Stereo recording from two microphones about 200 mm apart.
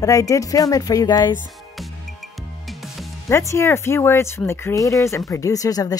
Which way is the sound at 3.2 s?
15° left (ahead or behind).